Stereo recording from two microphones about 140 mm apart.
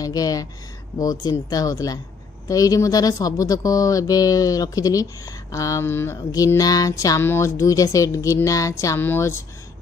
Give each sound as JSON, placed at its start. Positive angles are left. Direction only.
{"t": 0.0, "sound": "speech", "side_deg": 25}